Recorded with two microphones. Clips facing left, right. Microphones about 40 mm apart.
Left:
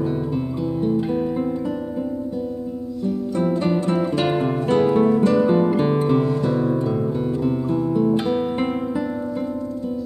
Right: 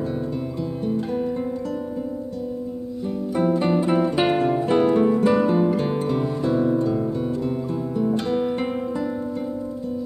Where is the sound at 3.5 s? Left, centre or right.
Centre.